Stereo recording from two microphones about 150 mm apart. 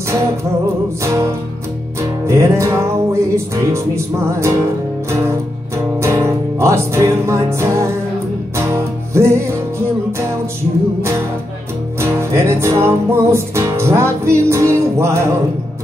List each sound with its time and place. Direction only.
1.0 s music: 20° right (ahead or behind)
12.0 s music: 15° right (ahead or behind)